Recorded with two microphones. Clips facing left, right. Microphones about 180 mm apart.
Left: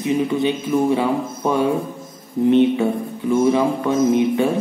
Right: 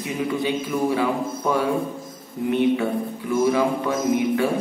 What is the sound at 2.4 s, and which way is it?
Music, 30° left (ahead or behind).